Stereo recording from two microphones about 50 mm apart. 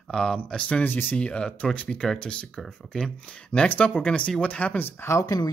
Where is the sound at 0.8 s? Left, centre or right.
Left.